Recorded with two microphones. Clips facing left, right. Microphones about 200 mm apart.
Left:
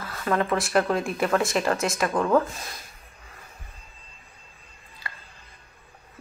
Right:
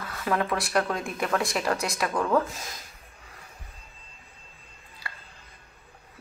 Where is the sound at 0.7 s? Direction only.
5° left (ahead or behind).